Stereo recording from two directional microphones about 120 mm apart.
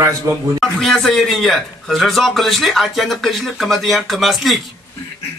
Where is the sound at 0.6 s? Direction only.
5° left (ahead or behind).